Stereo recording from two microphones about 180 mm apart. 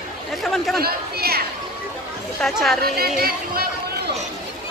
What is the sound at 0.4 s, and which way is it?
Speech, centre (ahead or behind).